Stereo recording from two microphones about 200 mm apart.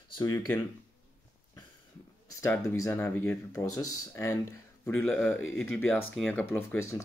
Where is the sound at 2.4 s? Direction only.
15° left (ahead or behind).